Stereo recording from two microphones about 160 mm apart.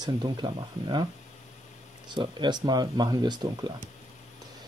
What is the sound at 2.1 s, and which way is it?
Speech, 30° right (ahead or behind).